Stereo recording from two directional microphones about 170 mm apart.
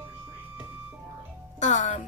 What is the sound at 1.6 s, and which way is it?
Speech, 45° left (ahead or behind).